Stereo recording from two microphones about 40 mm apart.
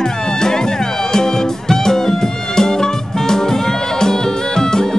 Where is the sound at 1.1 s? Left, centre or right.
Centre.